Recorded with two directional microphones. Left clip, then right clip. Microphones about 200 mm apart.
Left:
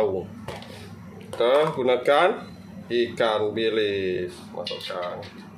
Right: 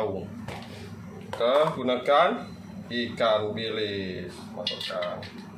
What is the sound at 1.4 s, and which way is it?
Speech, 50° left (ahead or behind).